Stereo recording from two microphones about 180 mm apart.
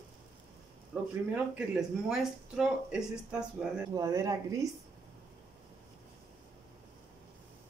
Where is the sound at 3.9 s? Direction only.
15° right (ahead or behind).